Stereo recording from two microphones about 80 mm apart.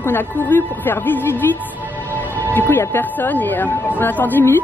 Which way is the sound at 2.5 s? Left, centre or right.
Left.